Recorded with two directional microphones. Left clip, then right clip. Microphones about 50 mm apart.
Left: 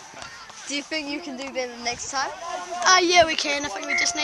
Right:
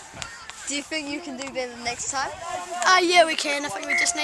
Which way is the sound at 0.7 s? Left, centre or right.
Left.